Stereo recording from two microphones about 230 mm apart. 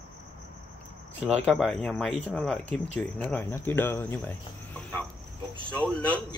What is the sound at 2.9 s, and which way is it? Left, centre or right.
Cricket, centre.